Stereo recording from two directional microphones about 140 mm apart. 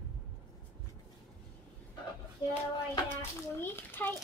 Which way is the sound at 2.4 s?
35° left (ahead or behind).